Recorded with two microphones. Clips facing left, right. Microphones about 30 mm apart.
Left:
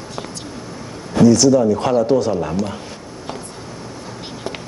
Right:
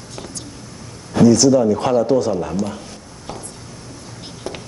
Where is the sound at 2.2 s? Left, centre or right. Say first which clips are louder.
Left 1 dB; centre.